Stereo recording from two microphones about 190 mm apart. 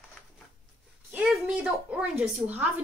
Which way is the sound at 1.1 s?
5° right (ahead or behind).